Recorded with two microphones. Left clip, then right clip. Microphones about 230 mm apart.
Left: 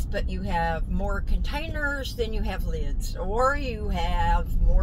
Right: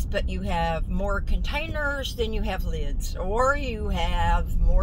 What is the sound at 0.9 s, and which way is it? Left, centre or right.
Speech, centre.